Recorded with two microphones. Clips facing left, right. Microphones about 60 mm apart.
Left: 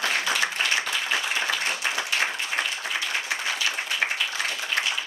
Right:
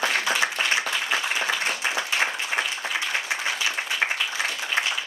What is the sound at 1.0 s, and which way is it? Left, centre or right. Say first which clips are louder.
Applause: right 1 dB; centre.